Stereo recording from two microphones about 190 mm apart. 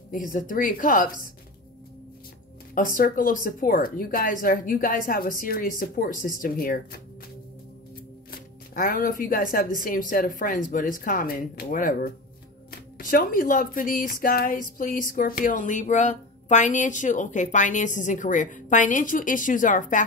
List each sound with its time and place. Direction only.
0.1 s a woman's voice: 45° left (ahead or behind)
2.7 s a woman's voice: 45° left (ahead or behind)
8.3 s a woman's voice: 50° left (ahead or behind)